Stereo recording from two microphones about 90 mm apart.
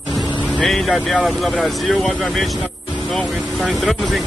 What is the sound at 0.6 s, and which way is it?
Vehicle, centre (ahead or behind).